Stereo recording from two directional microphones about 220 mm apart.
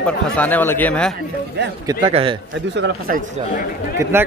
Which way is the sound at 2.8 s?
40° right (ahead or behind).